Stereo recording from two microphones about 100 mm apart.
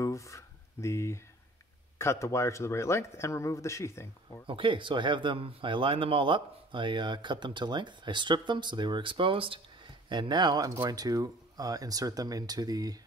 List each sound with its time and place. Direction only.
0.0 s a sound: 30° left (ahead or behind)
2.0 s speech: 30° left (ahead or behind)
4.5 s speech: 60° right (ahead or behind)
10.0 s speech: 50° right (ahead or behind)